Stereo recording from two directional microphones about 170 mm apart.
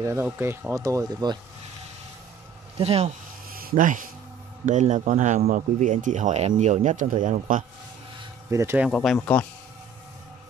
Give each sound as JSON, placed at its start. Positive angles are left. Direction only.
{"t": 0.0, "sound": "speech", "side_deg": -15}
{"t": 2.8, "sound": "speech", "side_deg": -35}
{"t": 3.5, "sound": "speech", "side_deg": -55}
{"t": 8.5, "sound": "speech", "side_deg": -15}
{"t": 8.9, "sound": "speech", "side_deg": 5}